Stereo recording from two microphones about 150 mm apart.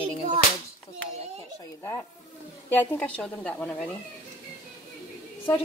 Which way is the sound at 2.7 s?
10° left (ahead or behind).